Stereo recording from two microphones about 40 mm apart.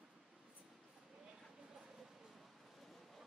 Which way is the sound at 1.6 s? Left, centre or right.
Centre.